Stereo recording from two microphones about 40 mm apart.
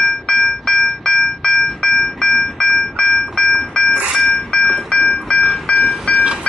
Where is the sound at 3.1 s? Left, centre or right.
Centre.